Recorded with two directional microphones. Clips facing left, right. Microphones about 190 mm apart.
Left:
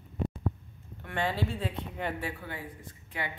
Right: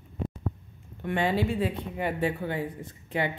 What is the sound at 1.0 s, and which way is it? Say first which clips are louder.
A woman's voice: right 5 dB; 20° right (ahead or behind).